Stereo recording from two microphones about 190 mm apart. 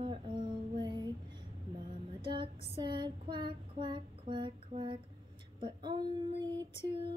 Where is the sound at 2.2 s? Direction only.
25° right (ahead or behind).